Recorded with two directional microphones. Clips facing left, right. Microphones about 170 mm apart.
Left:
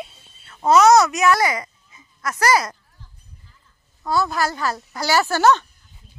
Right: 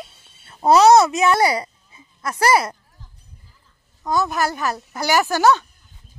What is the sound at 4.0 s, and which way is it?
Speech, 20° right (ahead or behind).